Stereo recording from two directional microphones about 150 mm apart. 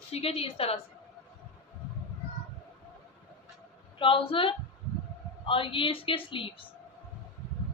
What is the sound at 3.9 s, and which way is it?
Speech, 35° left (ahead or behind).